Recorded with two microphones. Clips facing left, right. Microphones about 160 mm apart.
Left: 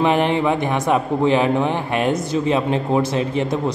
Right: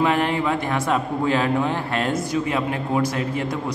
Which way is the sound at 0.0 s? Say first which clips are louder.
Left 3 dB; 20° left (ahead or behind).